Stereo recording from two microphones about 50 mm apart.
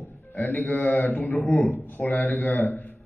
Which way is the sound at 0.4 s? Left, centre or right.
Left.